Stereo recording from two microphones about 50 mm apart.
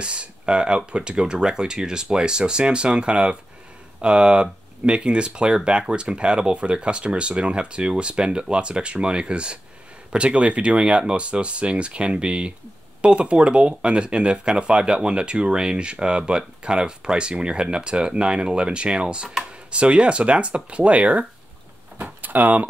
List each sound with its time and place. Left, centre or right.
0.0 s speech: right